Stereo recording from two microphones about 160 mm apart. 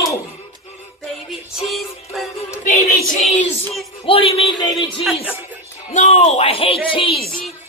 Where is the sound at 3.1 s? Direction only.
50° left (ahead or behind).